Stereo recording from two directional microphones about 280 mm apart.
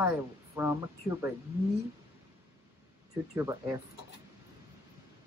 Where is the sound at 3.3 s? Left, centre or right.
Centre.